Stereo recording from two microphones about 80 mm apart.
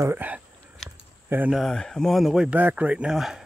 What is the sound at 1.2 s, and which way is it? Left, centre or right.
Speech, right.